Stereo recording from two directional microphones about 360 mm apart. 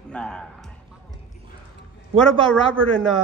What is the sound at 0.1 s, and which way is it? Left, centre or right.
Speech, centre.